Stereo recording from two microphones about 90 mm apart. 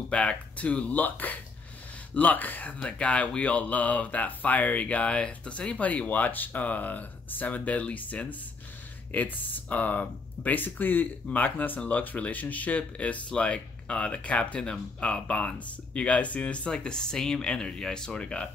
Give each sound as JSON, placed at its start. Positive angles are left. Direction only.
{"t": 0.1, "sound": "speech", "side_deg": 15}